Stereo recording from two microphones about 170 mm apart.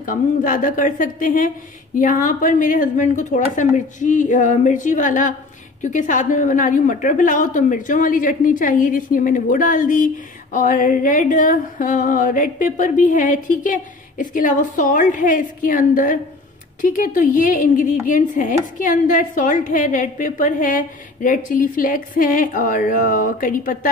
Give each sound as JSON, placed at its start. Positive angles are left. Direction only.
{"t": 0.0, "sound": "a woman's voice", "side_deg": 50}